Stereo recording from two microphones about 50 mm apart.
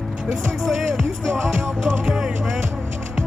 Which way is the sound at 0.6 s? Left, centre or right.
Centre.